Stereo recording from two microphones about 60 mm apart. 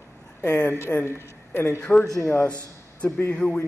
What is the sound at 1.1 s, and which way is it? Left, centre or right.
Speech, left.